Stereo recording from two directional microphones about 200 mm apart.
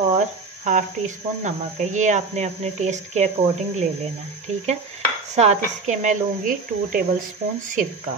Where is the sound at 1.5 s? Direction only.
35° right (ahead or behind).